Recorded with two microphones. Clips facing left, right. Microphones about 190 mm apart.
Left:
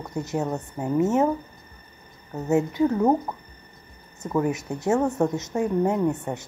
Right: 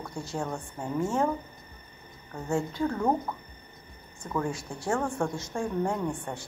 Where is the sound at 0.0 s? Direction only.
20° left (ahead or behind).